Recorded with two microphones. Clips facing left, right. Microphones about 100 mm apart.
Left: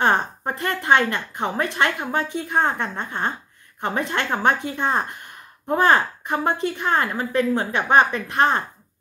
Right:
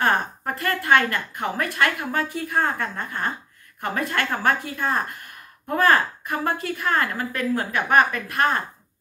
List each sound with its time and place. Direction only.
0.0 s a woman's voice: 25° left (ahead or behind)